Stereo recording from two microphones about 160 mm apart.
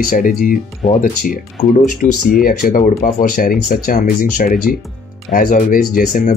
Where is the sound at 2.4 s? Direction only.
60° left (ahead or behind).